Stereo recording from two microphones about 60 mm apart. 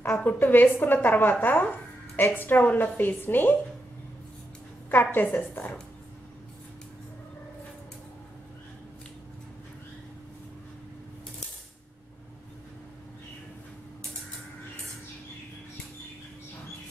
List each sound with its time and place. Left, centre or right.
0.2 s a woman's voice: left
1.4 s music: left
2.3 s a woman's voice: left
4.9 s a woman's voice: left